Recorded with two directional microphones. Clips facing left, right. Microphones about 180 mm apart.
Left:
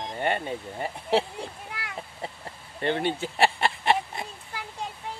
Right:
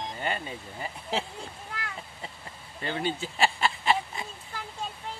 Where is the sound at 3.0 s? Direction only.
60° left (ahead or behind).